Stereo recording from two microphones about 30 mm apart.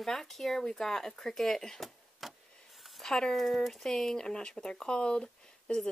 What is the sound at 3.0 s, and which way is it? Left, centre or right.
Speech, left.